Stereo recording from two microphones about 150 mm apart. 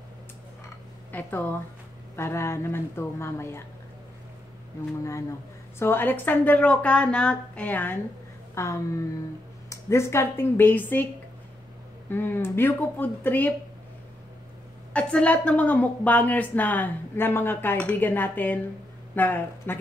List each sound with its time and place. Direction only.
1.1 s a woman's voice: 10° left (ahead or behind)
5.8 s a woman's voice: 15° left (ahead or behind)
12.1 s a woman's voice: 15° left (ahead or behind)
14.9 s a woman's voice: 10° left (ahead or behind)